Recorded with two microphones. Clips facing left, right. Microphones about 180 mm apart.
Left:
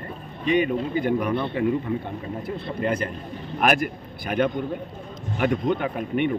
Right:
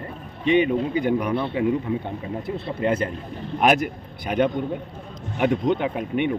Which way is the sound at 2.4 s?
25° right (ahead or behind).